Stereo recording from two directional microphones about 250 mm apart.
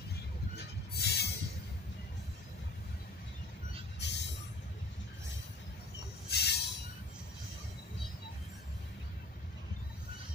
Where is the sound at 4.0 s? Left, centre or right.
Left.